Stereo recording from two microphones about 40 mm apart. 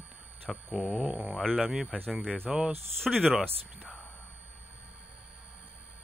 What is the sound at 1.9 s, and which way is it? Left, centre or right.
Speech, centre.